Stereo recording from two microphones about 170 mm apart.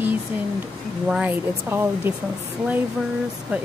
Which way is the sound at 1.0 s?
10° right (ahead or behind).